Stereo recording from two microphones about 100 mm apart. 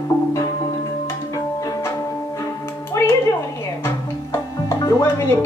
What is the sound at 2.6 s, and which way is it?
Music, 25° left (ahead or behind).